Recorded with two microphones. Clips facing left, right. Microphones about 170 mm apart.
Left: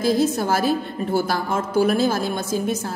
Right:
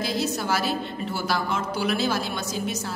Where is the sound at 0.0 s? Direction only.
50° left (ahead or behind).